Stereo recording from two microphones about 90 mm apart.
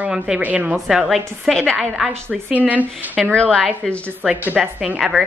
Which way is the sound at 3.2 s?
Centre (ahead or behind).